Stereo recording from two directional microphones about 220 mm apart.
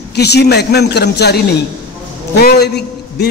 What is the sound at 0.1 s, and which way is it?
A man's voice, 50° left (ahead or behind).